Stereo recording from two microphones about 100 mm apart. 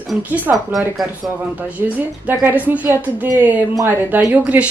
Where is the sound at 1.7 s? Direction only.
15° right (ahead or behind).